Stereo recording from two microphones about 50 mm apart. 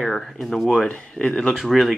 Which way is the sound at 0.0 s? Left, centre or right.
Centre.